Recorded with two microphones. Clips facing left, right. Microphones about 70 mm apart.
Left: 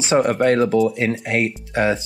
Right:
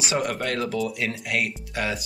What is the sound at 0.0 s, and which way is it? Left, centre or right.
Speech, left.